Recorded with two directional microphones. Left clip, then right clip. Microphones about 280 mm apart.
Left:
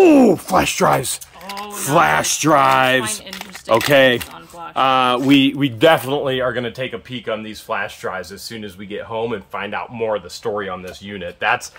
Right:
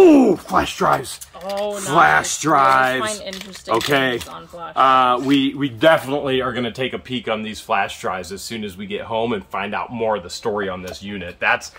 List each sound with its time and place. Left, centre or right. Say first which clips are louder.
0.0 s speech: even; left